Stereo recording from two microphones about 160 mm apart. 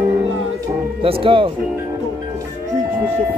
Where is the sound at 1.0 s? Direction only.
35° right (ahead or behind).